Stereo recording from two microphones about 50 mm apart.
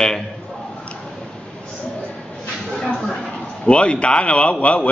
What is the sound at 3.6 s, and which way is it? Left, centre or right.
A man's voice, left.